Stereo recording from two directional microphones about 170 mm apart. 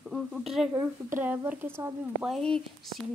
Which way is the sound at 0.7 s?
15° right (ahead or behind).